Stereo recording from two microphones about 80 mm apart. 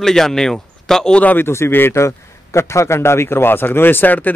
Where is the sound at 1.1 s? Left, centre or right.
Left.